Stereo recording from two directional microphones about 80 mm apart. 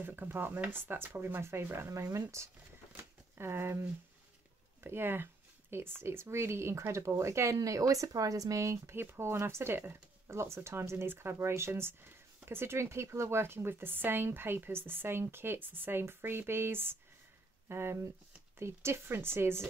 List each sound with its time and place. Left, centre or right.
0.0 s speech: right
3.0 s shuffling cards: right
4.8 s speech: right